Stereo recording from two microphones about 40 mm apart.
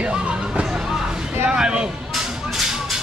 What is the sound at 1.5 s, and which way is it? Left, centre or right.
Speech, right.